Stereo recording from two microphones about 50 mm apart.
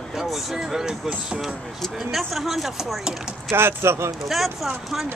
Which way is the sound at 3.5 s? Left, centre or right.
Right.